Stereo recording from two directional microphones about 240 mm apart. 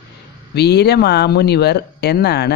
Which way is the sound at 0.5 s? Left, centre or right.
Left.